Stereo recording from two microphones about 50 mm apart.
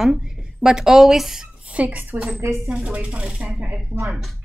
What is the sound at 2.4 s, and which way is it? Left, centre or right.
Speech, right.